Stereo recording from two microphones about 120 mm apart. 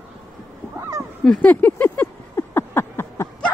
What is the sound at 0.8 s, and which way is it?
Goose, 25° right (ahead or behind).